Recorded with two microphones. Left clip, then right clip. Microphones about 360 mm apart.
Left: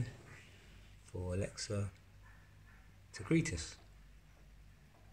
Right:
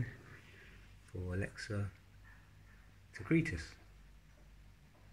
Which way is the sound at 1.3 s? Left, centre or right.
Centre.